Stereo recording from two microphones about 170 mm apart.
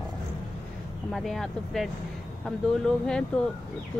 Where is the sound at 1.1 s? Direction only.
Centre (ahead or behind).